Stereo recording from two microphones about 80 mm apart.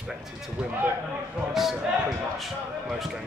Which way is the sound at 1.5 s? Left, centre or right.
Centre.